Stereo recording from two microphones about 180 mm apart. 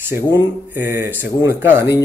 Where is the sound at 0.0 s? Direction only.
15° right (ahead or behind).